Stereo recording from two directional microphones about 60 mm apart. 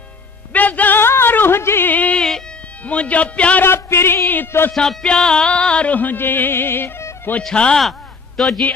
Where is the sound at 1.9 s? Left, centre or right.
Left.